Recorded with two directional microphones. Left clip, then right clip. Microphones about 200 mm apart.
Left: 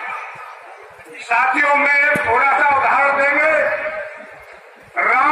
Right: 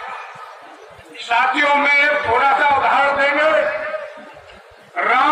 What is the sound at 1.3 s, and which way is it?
A man's voice, 45° right (ahead or behind).